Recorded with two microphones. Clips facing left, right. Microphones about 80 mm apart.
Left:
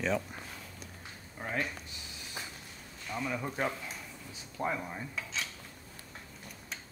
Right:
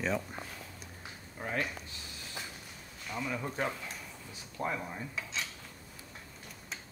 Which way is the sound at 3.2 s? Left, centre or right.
Centre.